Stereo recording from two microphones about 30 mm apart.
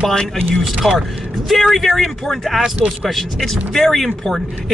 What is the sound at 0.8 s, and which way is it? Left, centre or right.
Speech, centre.